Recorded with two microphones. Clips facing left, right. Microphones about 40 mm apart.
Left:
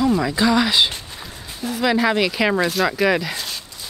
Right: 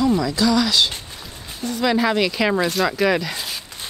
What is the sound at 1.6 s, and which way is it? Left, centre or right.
Speech, centre.